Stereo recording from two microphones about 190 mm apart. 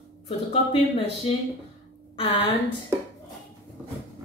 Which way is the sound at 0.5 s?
35° left (ahead or behind).